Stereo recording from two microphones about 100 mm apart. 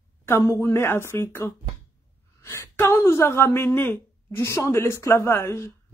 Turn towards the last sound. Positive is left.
turn(degrees=25)  # may be behind; listen again after turning